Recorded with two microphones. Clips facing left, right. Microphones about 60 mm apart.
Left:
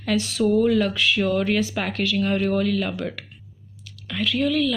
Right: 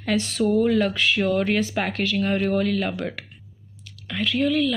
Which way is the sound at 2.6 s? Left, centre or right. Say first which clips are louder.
Even; right.